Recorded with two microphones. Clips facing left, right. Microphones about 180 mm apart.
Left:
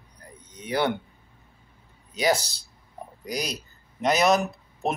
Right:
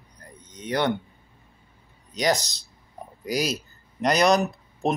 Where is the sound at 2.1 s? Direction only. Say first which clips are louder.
Even; 5° left (ahead or behind).